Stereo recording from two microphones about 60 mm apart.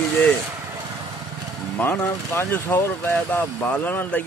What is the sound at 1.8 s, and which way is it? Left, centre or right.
Speech, left.